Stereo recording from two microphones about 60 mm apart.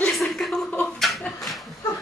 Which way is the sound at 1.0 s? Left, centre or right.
Centre.